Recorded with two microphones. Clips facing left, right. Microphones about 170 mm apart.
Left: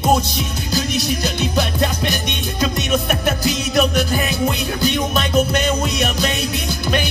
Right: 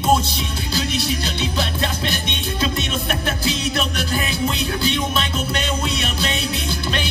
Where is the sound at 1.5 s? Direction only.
40° left (ahead or behind).